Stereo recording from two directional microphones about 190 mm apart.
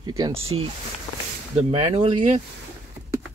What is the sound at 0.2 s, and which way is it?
Speech, 30° right (ahead or behind).